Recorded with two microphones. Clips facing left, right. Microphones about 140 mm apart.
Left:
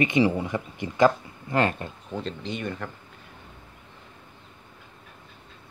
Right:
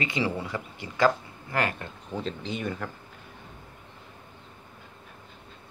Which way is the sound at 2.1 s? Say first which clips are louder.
Even; centre (ahead or behind).